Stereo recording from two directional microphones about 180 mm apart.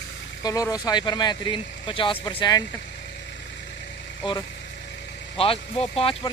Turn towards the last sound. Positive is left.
turn(degrees=30)  # may be behind; listen again after turning